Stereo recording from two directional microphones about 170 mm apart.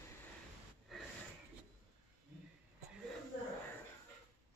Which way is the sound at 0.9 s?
Centre (ahead or behind).